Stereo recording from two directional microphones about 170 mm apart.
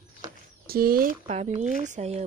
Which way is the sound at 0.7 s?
60° right (ahead or behind).